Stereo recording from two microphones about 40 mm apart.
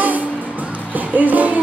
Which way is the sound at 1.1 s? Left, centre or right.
Right.